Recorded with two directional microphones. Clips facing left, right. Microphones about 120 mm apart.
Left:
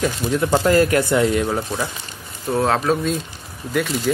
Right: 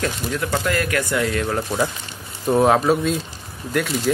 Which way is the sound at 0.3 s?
25° left (ahead or behind).